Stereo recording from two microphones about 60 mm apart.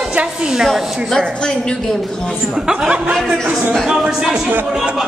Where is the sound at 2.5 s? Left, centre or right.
Centre.